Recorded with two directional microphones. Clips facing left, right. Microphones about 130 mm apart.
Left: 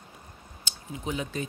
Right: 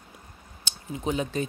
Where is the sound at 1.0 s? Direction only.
35° right (ahead or behind).